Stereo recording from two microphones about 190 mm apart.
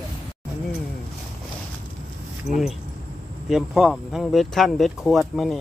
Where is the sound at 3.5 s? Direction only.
Centre (ahead or behind).